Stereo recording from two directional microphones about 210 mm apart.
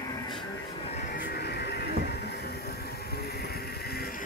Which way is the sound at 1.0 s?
40° left (ahead or behind).